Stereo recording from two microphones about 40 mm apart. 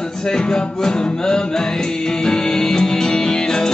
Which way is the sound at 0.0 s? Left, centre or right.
Centre.